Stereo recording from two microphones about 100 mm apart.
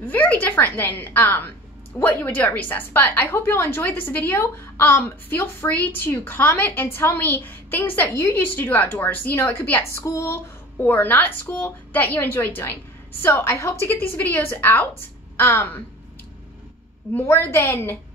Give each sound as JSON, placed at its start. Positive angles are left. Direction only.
{"t": 0.0, "sound": "a woman's voice", "side_deg": 15}
{"t": 10.8, "sound": "a woman's voice", "side_deg": 20}
{"t": 17.1, "sound": "a woman's voice", "side_deg": 20}